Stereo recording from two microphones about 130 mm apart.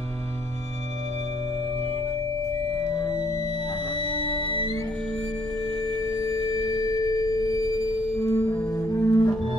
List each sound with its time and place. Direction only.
2.9 s music: 30° left (ahead or behind)
3.2 s music: 55° right (ahead or behind)
5.9 s a sound: 40° right (ahead or behind)
8.2 s music: 15° left (ahead or behind)
8.8 s music: 25° left (ahead or behind)